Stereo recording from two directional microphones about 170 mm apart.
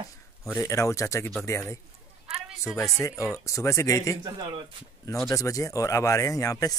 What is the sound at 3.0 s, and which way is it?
Speech, 20° left (ahead or behind).